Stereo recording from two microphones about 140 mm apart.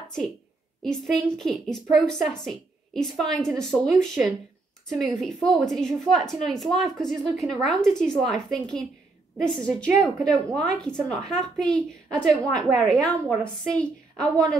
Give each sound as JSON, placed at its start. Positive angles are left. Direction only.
{"t": 0.8, "sound": "a woman's voice", "side_deg": 5}